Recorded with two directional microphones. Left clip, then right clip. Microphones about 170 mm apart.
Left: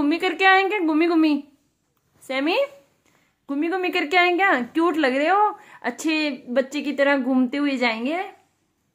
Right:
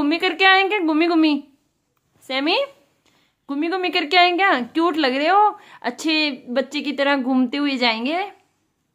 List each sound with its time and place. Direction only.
0.0 s a woman's voice: 5° right (ahead or behind)